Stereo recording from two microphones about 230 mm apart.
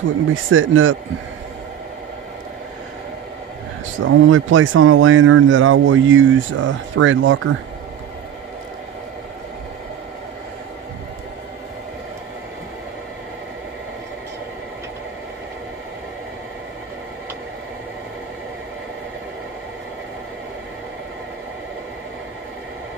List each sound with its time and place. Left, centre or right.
0.3 s speech: right
4.0 s speech: right